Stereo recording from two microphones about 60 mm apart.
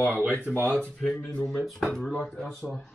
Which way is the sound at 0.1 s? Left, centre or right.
Right.